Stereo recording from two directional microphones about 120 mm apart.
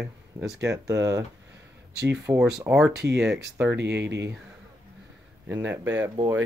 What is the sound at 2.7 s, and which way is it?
Speech, 15° right (ahead or behind).